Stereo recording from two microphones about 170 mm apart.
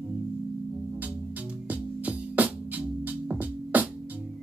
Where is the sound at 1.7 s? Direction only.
10° right (ahead or behind).